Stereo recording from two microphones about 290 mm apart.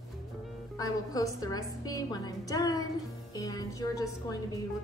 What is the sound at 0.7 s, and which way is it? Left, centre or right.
Speech, centre.